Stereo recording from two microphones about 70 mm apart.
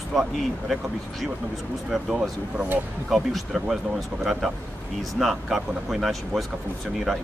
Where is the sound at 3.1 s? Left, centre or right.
Centre.